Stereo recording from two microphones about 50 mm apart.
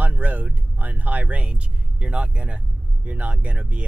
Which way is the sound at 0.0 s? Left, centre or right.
Right.